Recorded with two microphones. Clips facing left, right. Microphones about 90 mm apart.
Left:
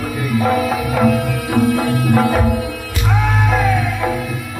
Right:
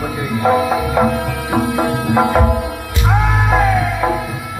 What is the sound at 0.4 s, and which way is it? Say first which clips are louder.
Music: right 3 dB; 20° right (ahead or behind).